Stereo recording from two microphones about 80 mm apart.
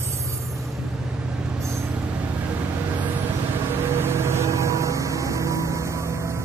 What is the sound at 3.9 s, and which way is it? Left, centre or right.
Vehicle, right.